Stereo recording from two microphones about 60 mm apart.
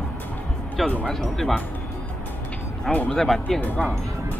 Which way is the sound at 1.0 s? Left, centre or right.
Centre.